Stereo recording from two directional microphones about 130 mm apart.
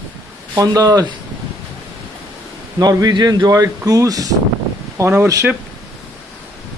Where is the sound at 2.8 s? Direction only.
30° right (ahead or behind).